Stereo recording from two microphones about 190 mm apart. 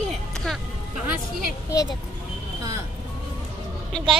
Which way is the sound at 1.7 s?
15° left (ahead or behind).